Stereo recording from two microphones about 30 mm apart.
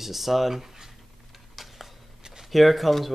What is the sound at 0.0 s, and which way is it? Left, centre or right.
Speech, centre.